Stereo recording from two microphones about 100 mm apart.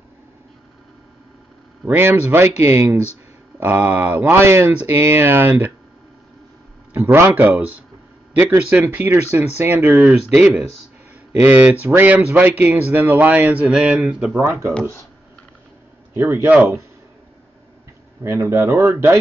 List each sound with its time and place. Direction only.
1.9 s speech: 20° right (ahead or behind)
6.9 s speech: 20° right (ahead or behind)
14.4 s speech: 25° right (ahead or behind)
16.1 s speech: 25° right (ahead or behind)
16.4 s speech: 15° right (ahead or behind)
18.2 s speech: 30° right (ahead or behind)